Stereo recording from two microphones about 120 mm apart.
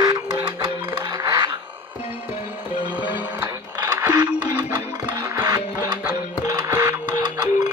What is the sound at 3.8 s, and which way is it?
Music, 30° right (ahead or behind).